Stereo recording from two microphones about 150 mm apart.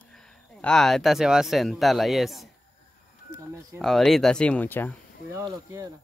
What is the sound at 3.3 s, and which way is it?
Speech, 55° left (ahead or behind).